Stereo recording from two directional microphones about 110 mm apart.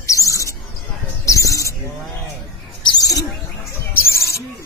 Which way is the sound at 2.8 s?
40° left (ahead or behind).